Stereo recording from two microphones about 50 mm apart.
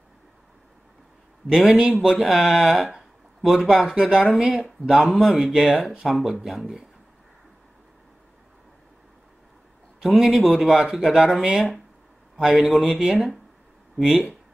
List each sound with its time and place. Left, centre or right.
1.7 s speech: centre
2.0 s speech: centre
10.0 s speech: centre